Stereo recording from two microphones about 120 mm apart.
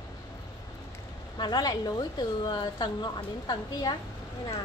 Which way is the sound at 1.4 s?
35° left (ahead or behind).